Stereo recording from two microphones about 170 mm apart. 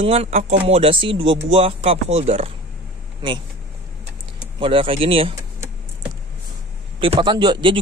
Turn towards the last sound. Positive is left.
turn(degrees=-30)  # may be behind; listen again after turning